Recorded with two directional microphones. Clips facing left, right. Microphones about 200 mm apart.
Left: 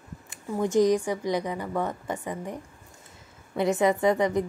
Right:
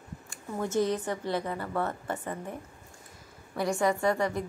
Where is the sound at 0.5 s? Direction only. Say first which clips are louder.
Left 6 dB; 15° left (ahead or behind).